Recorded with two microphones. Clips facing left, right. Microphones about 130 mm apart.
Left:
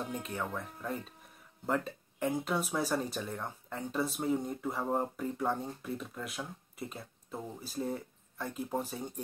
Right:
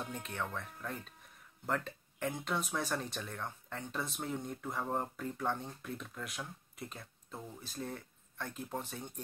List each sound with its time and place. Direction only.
0.1 s speech: 5° left (ahead or behind)